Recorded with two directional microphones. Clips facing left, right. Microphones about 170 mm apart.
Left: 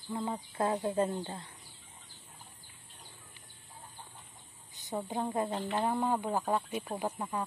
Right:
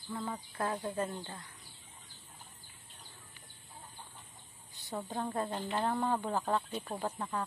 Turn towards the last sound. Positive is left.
turn(degrees=15)  # may be behind; listen again after turning